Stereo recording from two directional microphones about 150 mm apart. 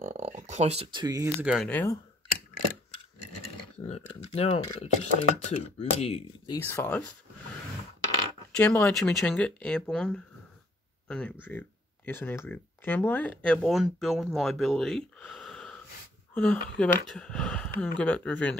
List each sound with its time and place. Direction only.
0.0 s a sound: 50° right (ahead or behind)
0.9 s speech: 25° right (ahead or behind)
1.4 s speech: 5° right (ahead or behind)
1.7 s speech: 15° left (ahead or behind)
3.4 s speech: 45° left (ahead or behind)
6.6 s speech: 15° left (ahead or behind)
8.5 s speech: 10° left (ahead or behind)